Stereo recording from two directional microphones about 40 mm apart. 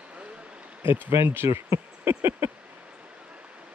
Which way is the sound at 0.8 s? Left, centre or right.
Right.